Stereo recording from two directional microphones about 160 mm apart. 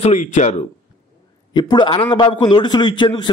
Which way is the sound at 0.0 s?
45° left (ahead or behind).